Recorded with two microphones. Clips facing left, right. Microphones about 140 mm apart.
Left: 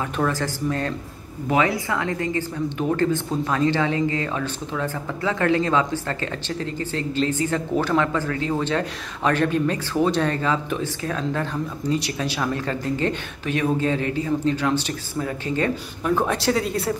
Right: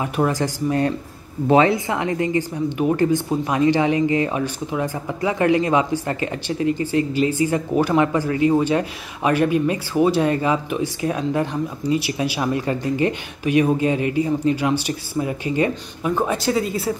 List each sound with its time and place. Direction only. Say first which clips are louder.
0.0 s speech: right 3 dB; 15° right (ahead or behind)
1.5 s speech: right 5 dB; 25° right (ahead or behind); by 16.9 s centre (ahead or behind)